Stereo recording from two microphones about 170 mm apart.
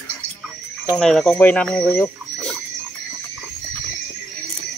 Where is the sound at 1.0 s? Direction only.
Centre (ahead or behind).